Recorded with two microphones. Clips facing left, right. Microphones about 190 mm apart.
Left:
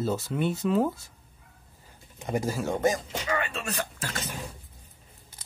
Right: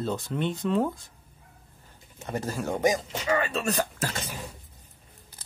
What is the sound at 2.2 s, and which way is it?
Speech, 10° left (ahead or behind).